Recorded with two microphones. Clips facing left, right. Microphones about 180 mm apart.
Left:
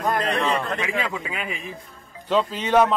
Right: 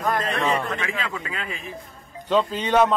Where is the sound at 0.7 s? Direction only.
15° left (ahead or behind).